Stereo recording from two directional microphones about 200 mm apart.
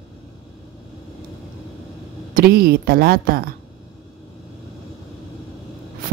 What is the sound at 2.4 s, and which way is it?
A woman's voice, 50° right (ahead or behind).